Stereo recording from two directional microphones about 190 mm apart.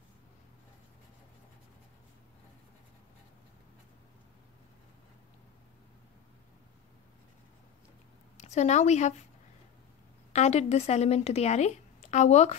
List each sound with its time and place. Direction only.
8.4 s speech: 35° left (ahead or behind)
10.3 s a woman's voice: 35° left (ahead or behind)